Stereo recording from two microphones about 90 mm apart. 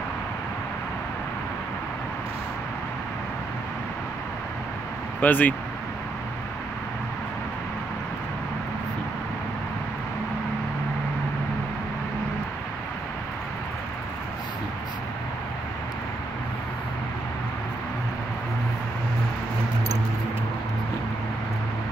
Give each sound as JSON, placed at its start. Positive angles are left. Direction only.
{"t": 5.2, "sound": "speech", "side_deg": 20}